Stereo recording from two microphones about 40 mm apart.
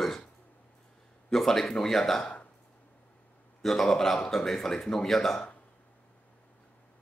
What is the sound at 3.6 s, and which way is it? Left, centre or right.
Speech, centre.